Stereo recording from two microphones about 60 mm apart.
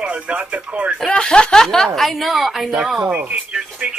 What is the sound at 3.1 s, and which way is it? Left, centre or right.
Speech, right.